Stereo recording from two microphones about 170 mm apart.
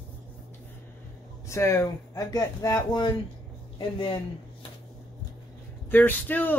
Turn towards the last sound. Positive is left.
turn(degrees=10)  # may be behind; listen again after turning